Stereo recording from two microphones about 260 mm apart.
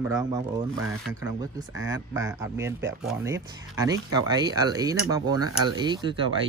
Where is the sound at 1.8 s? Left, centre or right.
Centre.